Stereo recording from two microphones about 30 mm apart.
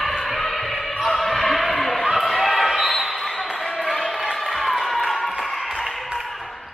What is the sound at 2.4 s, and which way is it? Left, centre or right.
Basketball bounce, centre.